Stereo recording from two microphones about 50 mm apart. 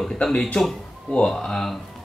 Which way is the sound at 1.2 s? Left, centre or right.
Centre.